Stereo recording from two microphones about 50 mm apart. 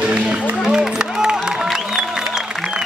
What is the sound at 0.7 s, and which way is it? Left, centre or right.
Music, centre.